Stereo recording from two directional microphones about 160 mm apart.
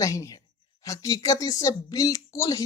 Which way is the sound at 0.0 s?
20° left (ahead or behind).